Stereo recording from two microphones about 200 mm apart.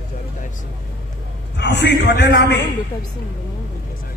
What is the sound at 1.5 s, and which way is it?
A man's voice, 60° left (ahead or behind).